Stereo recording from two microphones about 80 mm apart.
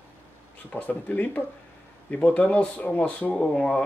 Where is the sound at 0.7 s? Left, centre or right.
Centre.